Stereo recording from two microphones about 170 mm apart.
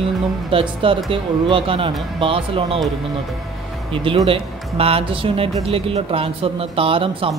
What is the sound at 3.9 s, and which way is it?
Speech, 35° right (ahead or behind).